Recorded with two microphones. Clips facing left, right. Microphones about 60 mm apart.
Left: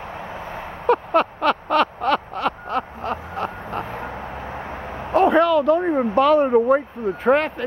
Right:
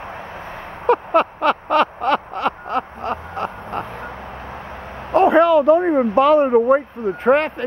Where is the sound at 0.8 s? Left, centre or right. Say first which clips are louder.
Right 2 dB; centre.